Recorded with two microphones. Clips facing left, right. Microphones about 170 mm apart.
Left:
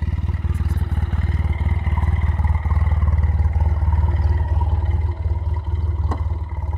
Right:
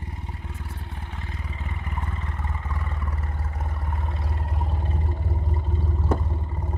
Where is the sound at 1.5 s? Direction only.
35° left (ahead or behind).